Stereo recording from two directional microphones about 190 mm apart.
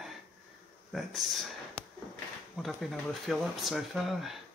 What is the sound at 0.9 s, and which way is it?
Speech, centre (ahead or behind).